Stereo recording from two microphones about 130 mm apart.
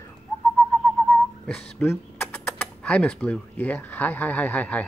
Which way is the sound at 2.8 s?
10° left (ahead or behind).